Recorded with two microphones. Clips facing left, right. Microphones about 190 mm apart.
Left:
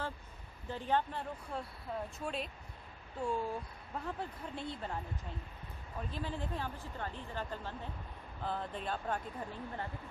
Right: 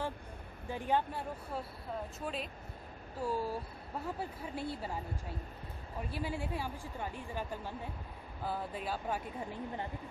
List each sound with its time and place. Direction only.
0.7 s speech: 10° right (ahead or behind)
5.9 s speech: 10° right (ahead or behind)